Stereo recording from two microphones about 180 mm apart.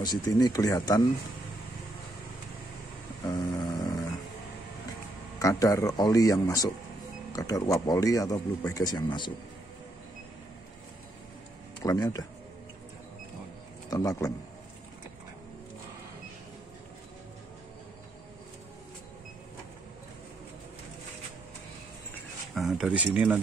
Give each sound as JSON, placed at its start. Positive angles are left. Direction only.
{"t": 0.0, "sound": "speech", "side_deg": 20}
{"t": 3.3, "sound": "a sound", "side_deg": 20}
{"t": 5.4, "sound": "speech", "side_deg": 20}
{"t": 11.8, "sound": "speech", "side_deg": 20}
{"t": 13.8, "sound": "a man's voice", "side_deg": 20}
{"t": 22.5, "sound": "speech", "side_deg": 0}